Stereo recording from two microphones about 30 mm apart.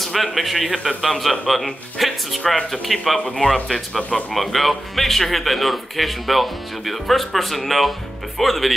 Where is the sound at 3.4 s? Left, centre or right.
Left.